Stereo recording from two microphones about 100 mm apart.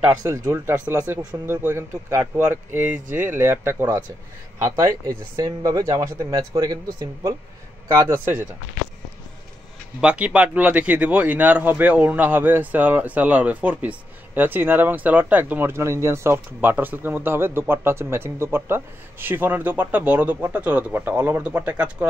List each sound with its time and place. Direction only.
0.1 s speech: 35° right (ahead or behind)
9.9 s a man's voice: 10° right (ahead or behind)